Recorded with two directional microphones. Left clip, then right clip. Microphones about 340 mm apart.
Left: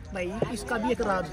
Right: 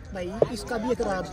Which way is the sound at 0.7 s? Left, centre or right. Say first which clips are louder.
Even; centre.